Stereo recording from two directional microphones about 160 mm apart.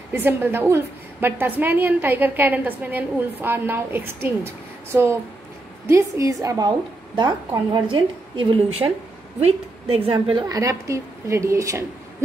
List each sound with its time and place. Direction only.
0.1 s a woman's voice: 15° right (ahead or behind); by 10.4 s 35° right (ahead or behind)
10.5 s a woman's voice: 20° right (ahead or behind)